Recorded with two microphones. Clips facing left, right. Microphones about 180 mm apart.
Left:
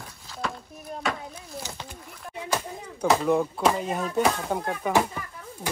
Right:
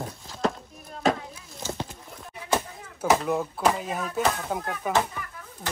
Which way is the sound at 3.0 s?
5° right (ahead or behind).